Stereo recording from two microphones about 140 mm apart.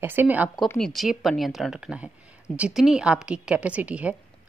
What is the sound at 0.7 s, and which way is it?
A woman's voice, centre (ahead or behind).